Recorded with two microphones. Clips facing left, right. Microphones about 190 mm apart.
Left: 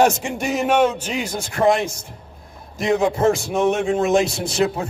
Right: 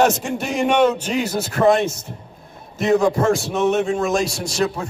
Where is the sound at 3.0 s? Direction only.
20° left (ahead or behind).